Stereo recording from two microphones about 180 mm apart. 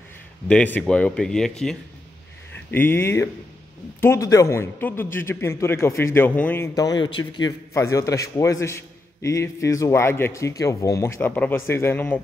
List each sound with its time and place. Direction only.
0.5 s speech: 10° left (ahead or behind)
2.7 s a man's voice: 10° left (ahead or behind)